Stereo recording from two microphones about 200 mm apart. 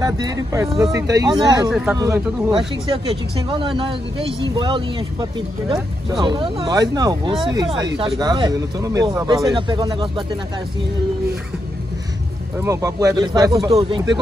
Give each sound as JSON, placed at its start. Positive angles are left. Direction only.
{"t": 0.0, "sound": "speech", "side_deg": -20}
{"t": 1.7, "sound": "speech", "side_deg": -5}
{"t": 2.0, "sound": "speech", "side_deg": -15}
{"t": 12.5, "sound": "speech", "side_deg": -15}